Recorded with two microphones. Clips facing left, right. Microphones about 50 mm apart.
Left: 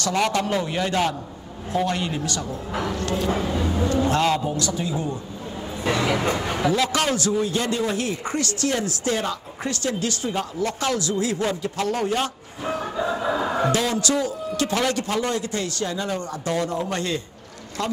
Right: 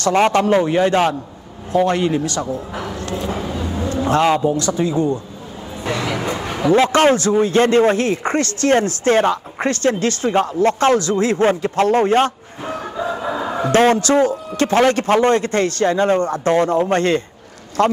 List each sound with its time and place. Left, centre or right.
0.0 s speech: right
3.3 s vehicle: centre
4.0 s a man's voice: right
4.6 s speech: right
6.7 s speech: right
12.6 s crowing: centre
13.7 s a man's voice: right